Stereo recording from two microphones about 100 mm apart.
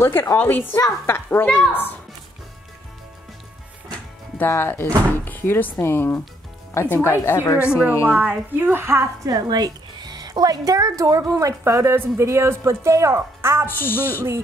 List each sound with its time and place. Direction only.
0.0 s speech: 25° left (ahead or behind)
4.4 s speech: 25° left (ahead or behind)
8.0 s a woman's voice: 15° right (ahead or behind)
13.7 s speech: 20° left (ahead or behind)